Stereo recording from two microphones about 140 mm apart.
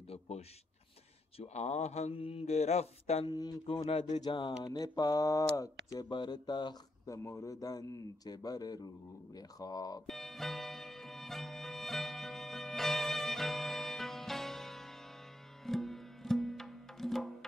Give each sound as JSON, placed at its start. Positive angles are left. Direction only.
{"t": 0.1, "sound": "speech", "side_deg": 45}
{"t": 3.3, "sound": "speech", "side_deg": 30}
{"t": 3.6, "sound": "speech", "side_deg": 45}
{"t": 4.1, "sound": "speech", "side_deg": 35}
{"t": 7.2, "sound": "speech", "side_deg": 20}
{"t": 10.0, "sound": "music", "side_deg": 0}